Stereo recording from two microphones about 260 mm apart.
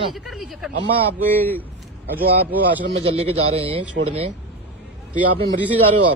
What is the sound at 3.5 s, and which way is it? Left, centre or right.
Speech, right.